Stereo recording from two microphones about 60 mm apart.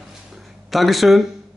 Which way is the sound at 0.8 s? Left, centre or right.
Centre.